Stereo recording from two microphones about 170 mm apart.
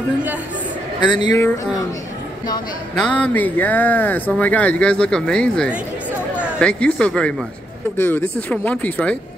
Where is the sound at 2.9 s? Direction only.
5° left (ahead or behind).